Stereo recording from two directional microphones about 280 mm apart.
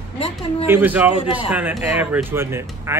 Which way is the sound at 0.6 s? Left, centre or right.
Centre.